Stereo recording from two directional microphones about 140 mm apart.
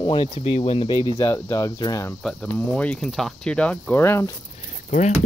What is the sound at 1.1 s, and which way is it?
Speech, 25° left (ahead or behind).